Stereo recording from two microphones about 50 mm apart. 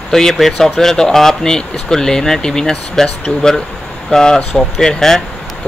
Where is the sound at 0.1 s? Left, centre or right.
Centre.